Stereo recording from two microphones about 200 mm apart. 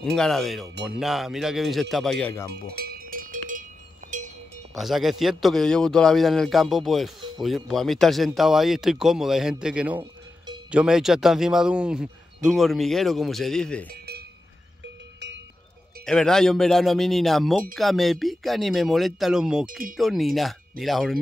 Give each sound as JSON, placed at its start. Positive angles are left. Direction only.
{"t": 0.0, "sound": "a man's voice", "side_deg": 0}
{"t": 2.7, "sound": "cowbell", "side_deg": -45}
{"t": 4.7, "sound": "a man's voice", "side_deg": 0}
{"t": 16.1, "sound": "a man's voice", "side_deg": 5}